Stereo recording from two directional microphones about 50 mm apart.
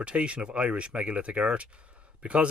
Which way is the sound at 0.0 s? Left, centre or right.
Right.